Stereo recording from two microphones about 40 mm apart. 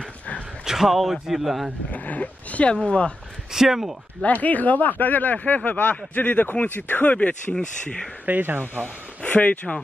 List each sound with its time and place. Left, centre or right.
0.7 s speech: centre
1.9 s speech: left
3.5 s speech: centre
4.2 s speech: left
7.1 s speech: left
8.3 s speech: right
9.2 s speech: left